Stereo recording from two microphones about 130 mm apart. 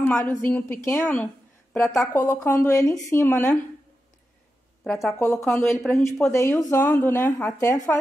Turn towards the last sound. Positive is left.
turn(degrees=15)  # may be behind; listen again after turning